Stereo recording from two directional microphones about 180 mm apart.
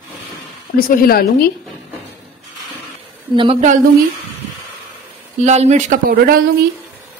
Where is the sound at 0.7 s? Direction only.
55° left (ahead or behind).